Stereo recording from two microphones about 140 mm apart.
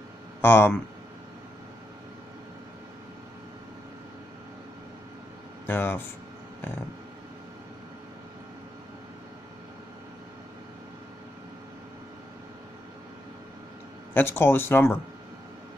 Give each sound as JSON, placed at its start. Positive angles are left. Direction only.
{"t": 0.4, "sound": "speech", "side_deg": 15}
{"t": 5.7, "sound": "speech", "side_deg": 15}
{"t": 14.1, "sound": "speech", "side_deg": 15}